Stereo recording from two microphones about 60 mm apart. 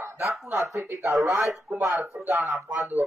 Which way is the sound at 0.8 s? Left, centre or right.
Right.